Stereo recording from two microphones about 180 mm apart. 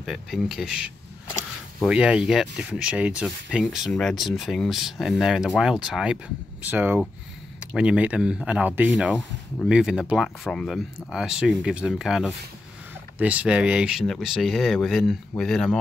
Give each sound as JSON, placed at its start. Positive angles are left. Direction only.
{"t": 0.0, "sound": "speech", "side_deg": 0}